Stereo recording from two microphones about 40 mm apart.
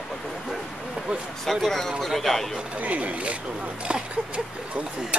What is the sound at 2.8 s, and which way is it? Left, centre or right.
Speech, right.